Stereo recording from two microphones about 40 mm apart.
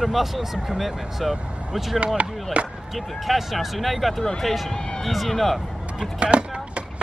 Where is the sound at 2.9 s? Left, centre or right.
Centre.